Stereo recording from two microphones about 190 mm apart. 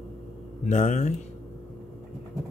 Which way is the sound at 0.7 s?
40° left (ahead or behind).